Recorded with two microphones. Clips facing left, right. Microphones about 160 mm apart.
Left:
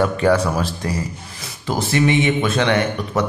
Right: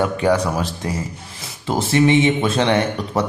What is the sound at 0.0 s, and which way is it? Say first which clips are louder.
Speech: left 1 dB; 15° right (ahead or behind).